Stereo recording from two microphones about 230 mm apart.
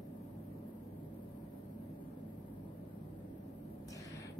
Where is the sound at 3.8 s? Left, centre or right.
Centre.